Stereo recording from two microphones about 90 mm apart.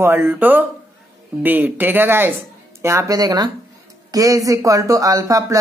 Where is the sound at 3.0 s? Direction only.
45° right (ahead or behind).